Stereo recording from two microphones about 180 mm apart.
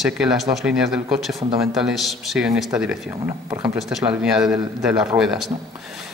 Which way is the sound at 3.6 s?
Centre (ahead or behind).